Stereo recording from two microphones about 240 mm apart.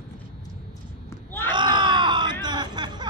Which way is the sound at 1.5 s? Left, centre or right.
Centre.